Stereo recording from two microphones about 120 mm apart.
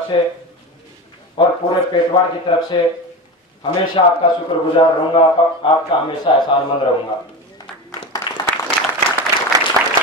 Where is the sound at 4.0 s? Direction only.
45° left (ahead or behind).